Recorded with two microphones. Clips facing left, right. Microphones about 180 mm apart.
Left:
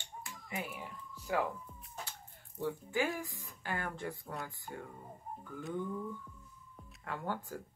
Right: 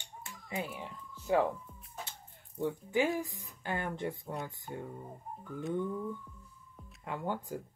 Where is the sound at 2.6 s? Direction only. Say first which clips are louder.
Right 4 dB; 20° right (ahead or behind).